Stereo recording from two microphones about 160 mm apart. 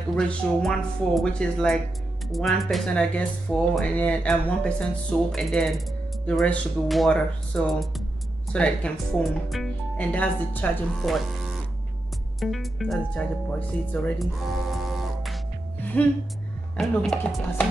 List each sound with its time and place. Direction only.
0.1 s speech: 5° left (ahead or behind)
16.7 s speech: 5° left (ahead or behind)